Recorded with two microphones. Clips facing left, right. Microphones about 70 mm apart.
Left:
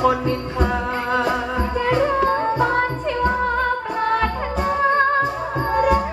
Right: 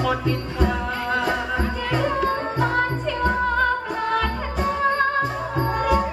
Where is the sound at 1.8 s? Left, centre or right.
Left.